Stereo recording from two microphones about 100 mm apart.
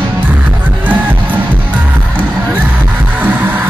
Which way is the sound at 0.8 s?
20° right (ahead or behind).